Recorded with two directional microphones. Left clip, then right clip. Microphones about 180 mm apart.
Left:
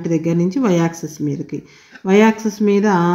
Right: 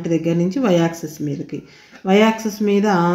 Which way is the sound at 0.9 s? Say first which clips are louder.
Even; 20° left (ahead or behind).